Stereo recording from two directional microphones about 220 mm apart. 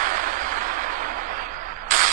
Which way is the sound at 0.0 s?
40° right (ahead or behind).